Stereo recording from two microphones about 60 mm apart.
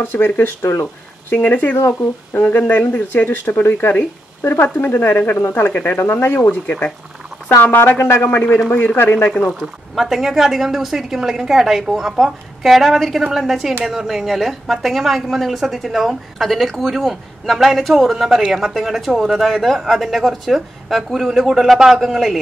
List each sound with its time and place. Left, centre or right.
0.0 s speech: left
1.3 s speech: left
6.6 s speech: left
8.6 s speech: left
9.9 s a woman's voice: centre